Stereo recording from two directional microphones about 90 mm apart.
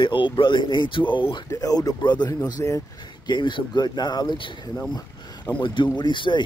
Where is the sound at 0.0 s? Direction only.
70° left (ahead or behind).